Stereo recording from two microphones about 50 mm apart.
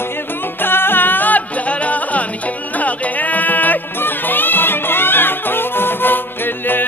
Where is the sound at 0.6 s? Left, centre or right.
Left.